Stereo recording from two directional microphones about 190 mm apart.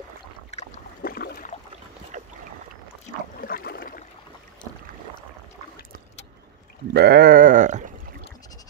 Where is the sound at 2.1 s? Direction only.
40° right (ahead or behind).